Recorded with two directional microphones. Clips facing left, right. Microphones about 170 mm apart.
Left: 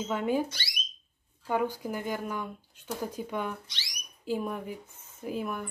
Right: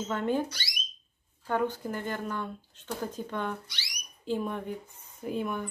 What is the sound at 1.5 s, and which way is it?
A woman's voice, 10° left (ahead or behind).